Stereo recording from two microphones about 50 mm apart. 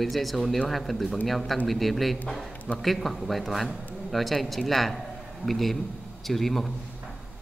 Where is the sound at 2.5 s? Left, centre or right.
Left.